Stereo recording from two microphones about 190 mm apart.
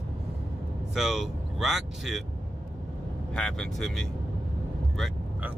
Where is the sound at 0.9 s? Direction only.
Centre (ahead or behind).